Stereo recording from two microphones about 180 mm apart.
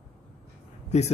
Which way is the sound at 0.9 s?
40° left (ahead or behind).